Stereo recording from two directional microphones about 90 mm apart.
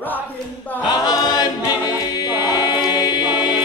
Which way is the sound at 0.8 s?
45° left (ahead or behind).